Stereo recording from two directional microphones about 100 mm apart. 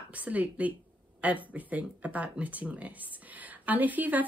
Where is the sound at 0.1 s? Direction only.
15° right (ahead or behind).